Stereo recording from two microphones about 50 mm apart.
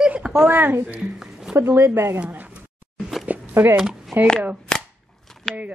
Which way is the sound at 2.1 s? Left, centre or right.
Right.